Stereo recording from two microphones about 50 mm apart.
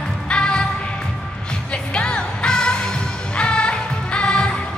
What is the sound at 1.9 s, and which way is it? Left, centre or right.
Music, centre.